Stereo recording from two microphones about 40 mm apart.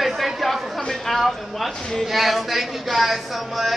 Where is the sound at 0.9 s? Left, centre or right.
Centre.